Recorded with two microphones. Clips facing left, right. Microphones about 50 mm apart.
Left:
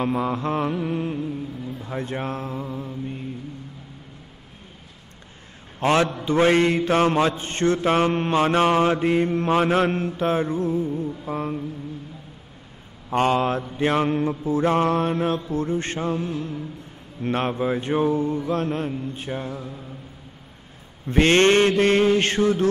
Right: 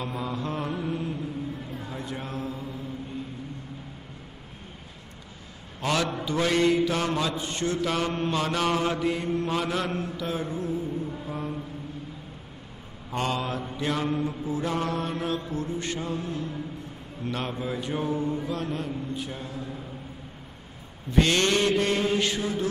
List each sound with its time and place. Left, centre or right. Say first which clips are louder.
0.0 s mantra: left 8 dB; left
5.8 s a man's voice: left 7 dB; left
6.2 s mantra: left 4 dB; left
13.1 s mantra: left 8 dB; left
21.1 s mantra: left 6 dB; left